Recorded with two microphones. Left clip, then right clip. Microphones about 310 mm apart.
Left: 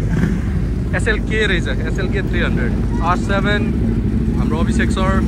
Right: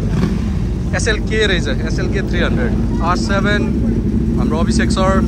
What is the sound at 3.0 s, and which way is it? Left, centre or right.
Speech, centre.